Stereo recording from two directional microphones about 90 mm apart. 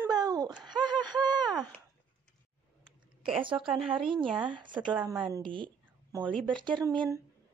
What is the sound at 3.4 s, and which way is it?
Speech, 75° right (ahead or behind).